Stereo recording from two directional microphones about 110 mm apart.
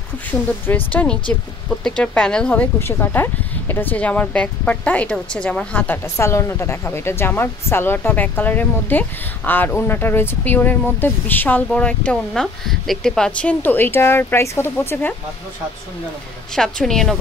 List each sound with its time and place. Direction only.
0.7 s speech: 15° left (ahead or behind)
1.7 s speech: 5° left (ahead or behind)
16.5 s a woman's voice: 5° left (ahead or behind)